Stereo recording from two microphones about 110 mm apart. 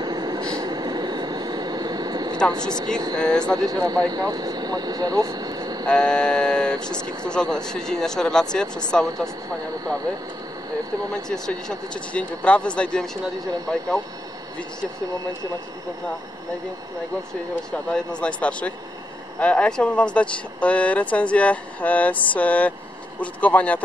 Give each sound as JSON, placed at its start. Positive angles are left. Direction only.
{"t": 0.0, "sound": "vehicle", "side_deg": -40}
{"t": 3.2, "sound": "speech", "side_deg": 10}
{"t": 3.5, "sound": "speech", "side_deg": -35}
{"t": 5.9, "sound": "speech", "side_deg": 10}
{"t": 11.2, "sound": "speech", "side_deg": 5}
{"t": 17.6, "sound": "speech", "side_deg": 10}